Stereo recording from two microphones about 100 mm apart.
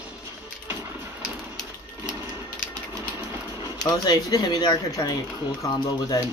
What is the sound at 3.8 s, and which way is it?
Speech, 35° left (ahead or behind).